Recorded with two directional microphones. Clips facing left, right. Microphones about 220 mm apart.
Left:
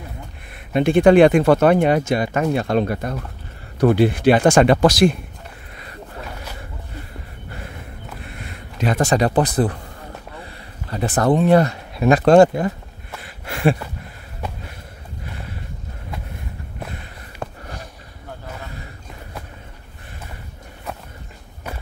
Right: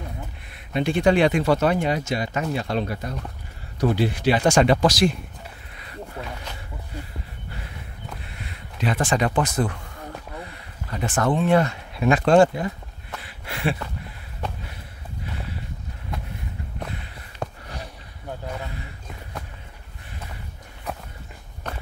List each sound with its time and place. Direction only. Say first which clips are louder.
0.7 s speech: left 7 dB; 55° left (ahead or behind)
8.3 s speech: left 4 dB; 50° left (ahead or behind)
13.2 s a sound: left 8 dB; 45° left (ahead or behind)
17.4 s sniff: even; 5° left (ahead or behind)
21.7 s walk: left 1 dB; 10° left (ahead or behind)